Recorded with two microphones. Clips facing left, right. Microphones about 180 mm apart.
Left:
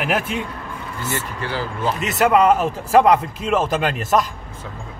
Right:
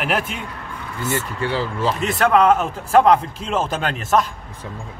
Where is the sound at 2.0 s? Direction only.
5° left (ahead or behind).